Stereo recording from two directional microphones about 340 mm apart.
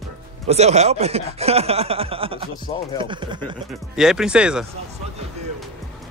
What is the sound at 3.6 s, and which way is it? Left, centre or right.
Speech, centre.